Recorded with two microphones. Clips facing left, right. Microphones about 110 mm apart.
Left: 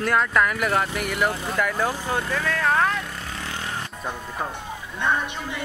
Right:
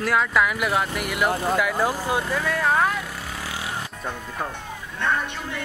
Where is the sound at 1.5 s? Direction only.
5° right (ahead or behind).